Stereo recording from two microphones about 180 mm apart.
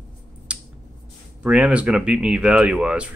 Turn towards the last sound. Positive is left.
turn(degrees=-5)  # may be behind; listen again after turning